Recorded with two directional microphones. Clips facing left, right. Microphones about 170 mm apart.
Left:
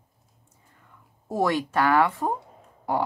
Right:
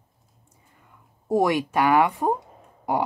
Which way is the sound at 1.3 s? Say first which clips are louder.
Right 3 dB; 15° right (ahead or behind).